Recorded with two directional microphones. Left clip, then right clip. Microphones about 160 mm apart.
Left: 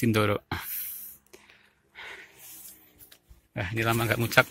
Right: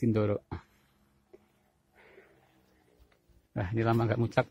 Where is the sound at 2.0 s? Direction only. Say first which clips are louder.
Left 15 dB; 5° right (ahead or behind).